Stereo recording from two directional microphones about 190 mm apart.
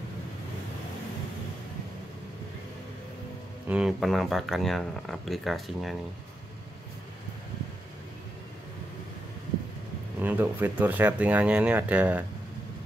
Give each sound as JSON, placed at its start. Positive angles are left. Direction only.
{"t": 3.6, "sound": "speech", "side_deg": -5}
{"t": 10.2, "sound": "speech", "side_deg": -10}